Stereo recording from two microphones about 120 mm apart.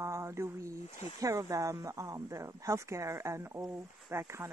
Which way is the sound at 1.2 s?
30° right (ahead or behind).